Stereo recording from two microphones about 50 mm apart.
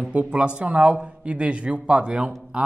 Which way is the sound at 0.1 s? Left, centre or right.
Right.